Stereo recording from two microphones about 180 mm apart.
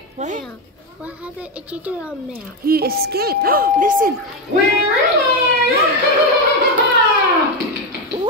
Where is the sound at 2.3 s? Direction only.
55° right (ahead or behind).